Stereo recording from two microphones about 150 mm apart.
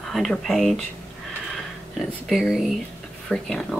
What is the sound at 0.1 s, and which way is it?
Speech, centre (ahead or behind).